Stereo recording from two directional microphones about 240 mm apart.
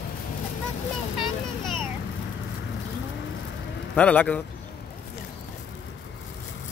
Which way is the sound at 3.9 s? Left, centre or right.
Centre.